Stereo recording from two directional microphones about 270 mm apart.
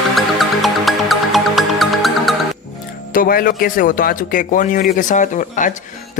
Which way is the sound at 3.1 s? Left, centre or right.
Left.